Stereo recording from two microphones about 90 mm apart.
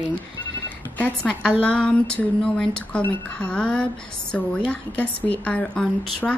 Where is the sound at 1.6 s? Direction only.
15° left (ahead or behind).